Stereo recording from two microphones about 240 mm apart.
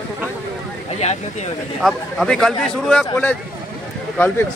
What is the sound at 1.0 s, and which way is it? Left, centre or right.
Speech, left.